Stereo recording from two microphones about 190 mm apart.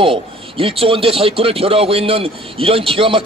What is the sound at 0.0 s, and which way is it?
A man's voice, 30° right (ahead or behind).